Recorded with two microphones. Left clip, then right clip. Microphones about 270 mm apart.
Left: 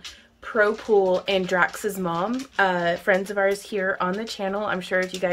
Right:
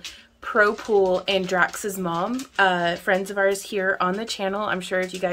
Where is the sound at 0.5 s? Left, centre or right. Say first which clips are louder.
Right 1 dB; centre.